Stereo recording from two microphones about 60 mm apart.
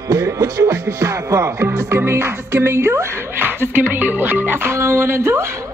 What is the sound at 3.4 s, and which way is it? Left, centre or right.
Speech, right.